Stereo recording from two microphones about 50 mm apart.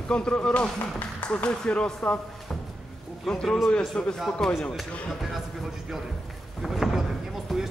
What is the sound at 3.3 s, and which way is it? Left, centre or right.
Speech, centre.